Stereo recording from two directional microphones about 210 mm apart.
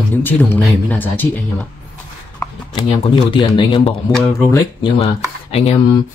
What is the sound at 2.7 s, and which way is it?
Speech, 25° left (ahead or behind).